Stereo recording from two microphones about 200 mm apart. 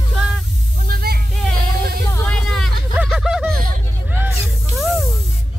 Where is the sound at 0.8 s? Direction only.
50° right (ahead or behind).